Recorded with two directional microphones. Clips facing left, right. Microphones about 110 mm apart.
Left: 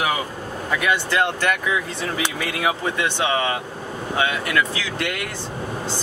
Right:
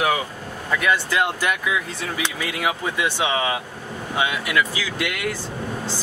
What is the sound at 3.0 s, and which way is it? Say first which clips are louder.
Speech: right 1 dB; 10° right (ahead or behind).